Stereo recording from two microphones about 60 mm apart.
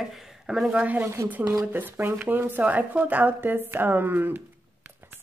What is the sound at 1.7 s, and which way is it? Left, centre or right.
Speech, right.